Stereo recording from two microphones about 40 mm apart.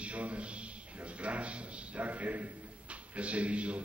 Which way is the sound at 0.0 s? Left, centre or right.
Right.